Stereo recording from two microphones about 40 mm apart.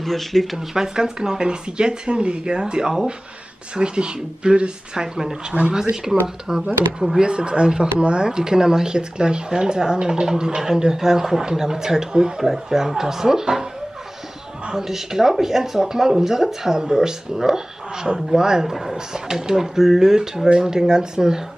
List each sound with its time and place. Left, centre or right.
0.0 s speech: centre
0.6 s speech: centre
6.2 s speech: centre
7.2 s speech: right
14.7 s speech: centre